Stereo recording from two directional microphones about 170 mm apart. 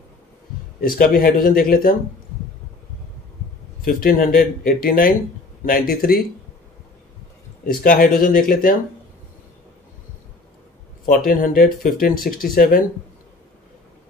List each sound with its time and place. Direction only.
0.7 s speech: 55° left (ahead or behind)
3.8 s speech: 55° left (ahead or behind)
7.6 s speech: 55° left (ahead or behind)
11.1 s speech: 55° left (ahead or behind)